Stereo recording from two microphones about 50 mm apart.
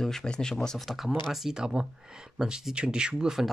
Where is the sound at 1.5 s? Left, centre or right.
Centre.